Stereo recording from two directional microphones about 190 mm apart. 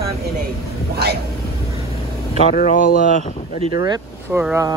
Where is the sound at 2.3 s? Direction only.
40° left (ahead or behind).